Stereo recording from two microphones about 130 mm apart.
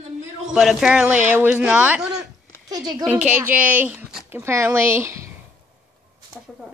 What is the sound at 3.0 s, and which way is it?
A woman's voice, 10° right (ahead or behind).